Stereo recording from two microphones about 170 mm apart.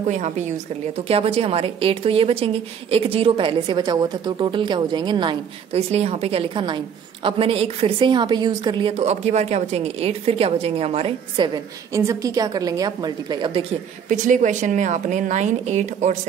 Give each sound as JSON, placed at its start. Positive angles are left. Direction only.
{"t": 0.0, "sound": "a woman's voice", "side_deg": -45}
{"t": 14.0, "sound": "a woman's voice", "side_deg": -45}